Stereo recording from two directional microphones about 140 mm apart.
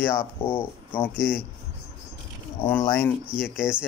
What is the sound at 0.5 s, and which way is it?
Speech, 15° left (ahead or behind).